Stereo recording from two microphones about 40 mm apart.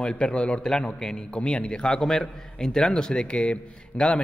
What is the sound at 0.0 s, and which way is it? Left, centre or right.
Speech, left.